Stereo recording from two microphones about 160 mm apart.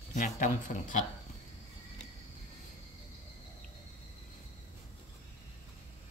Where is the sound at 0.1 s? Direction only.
55° left (ahead or behind).